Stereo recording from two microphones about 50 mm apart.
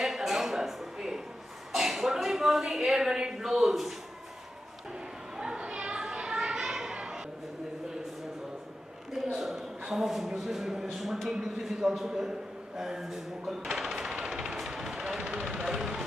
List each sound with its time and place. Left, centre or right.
0.0 s a sound: centre
1.7 s a woman's voice: centre
5.4 s children playing: centre
9.4 s a man's voice: centre
11.3 s a sound: centre
15.7 s speech: centre